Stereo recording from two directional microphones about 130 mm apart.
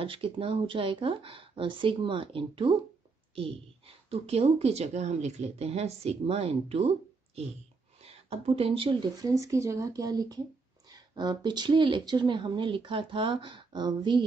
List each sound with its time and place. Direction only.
0.0 s a woman's voice: 45° right (ahead or behind)
9.1 s speech: 25° right (ahead or behind)